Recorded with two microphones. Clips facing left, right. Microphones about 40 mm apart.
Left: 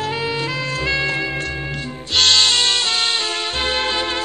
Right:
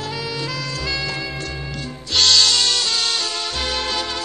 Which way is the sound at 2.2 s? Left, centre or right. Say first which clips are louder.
Left 1 dB; left.